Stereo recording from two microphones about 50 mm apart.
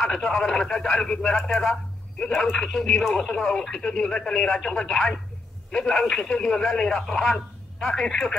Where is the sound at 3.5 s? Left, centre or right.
Centre.